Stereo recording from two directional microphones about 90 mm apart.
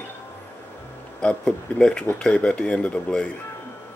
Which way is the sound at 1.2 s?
10° left (ahead or behind).